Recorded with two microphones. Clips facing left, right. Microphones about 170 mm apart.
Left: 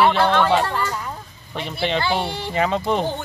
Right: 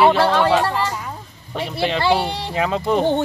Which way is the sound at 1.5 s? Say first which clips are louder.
Right 2 dB; 5° right (ahead or behind).